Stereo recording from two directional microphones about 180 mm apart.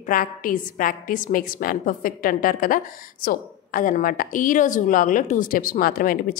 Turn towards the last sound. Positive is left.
turn(degrees=50)  # may be behind; listen again after turning